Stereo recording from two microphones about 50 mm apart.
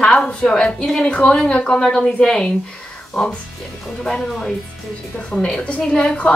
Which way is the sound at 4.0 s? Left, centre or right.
Centre.